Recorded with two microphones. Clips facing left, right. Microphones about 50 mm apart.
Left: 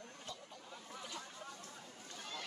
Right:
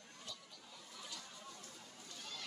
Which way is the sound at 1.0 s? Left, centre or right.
Left.